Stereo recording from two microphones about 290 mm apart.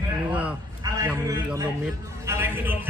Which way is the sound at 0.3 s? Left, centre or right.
Centre.